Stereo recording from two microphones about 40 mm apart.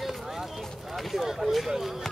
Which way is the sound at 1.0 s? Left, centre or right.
Centre.